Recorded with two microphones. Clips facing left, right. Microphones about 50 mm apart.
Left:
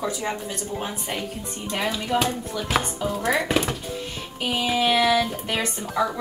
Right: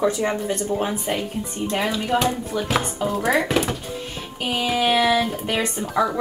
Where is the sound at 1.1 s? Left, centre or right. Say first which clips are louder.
Right 5 dB; centre.